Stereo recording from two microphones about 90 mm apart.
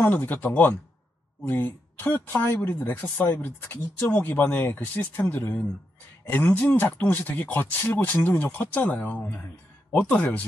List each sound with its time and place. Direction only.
0.0 s speech: 20° left (ahead or behind)